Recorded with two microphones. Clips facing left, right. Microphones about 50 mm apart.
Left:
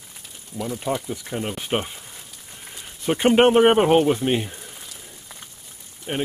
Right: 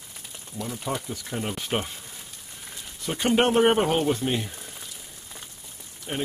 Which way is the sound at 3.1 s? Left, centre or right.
Left.